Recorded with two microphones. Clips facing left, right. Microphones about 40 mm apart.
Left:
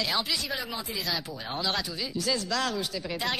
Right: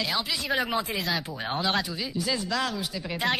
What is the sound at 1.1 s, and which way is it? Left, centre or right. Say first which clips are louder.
Speech: right 3 dB; right.